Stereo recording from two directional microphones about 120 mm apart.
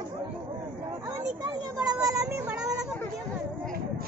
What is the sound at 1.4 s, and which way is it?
Speech, 35° right (ahead or behind).